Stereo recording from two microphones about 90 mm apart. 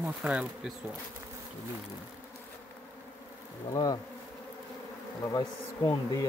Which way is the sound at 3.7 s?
50° left (ahead or behind).